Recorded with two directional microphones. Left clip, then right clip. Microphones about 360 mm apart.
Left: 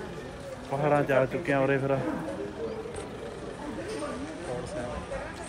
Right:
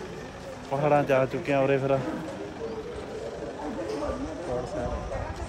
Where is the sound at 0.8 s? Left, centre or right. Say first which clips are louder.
Right 2 dB; centre.